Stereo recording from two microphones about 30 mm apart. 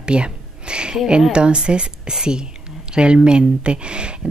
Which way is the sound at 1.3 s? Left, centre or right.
Right.